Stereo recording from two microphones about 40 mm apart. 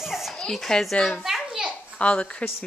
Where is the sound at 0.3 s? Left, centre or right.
Centre.